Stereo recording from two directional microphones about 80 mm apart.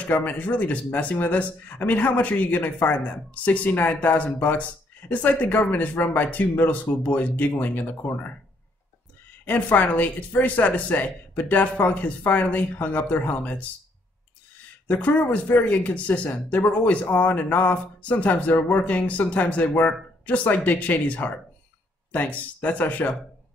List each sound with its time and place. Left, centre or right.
0.0 s speech: left
9.5 s speech: left
14.9 s speech: centre